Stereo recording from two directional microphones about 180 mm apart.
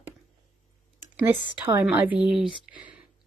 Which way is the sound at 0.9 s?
15° right (ahead or behind).